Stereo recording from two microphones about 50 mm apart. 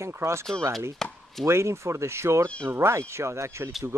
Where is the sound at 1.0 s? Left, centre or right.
Centre.